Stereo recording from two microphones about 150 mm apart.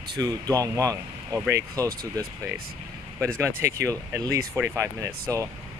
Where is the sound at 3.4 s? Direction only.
20° right (ahead or behind).